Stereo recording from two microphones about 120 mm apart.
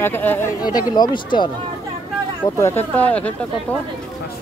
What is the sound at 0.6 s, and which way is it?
Speech, 35° left (ahead or behind).